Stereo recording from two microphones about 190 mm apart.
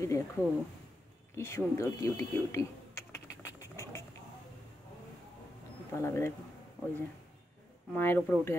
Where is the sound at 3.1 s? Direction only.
15° left (ahead or behind).